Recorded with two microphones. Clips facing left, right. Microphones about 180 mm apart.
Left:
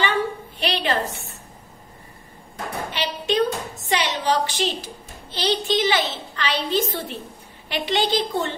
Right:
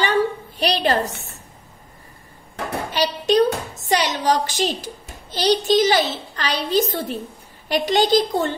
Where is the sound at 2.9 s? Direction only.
40° right (ahead or behind).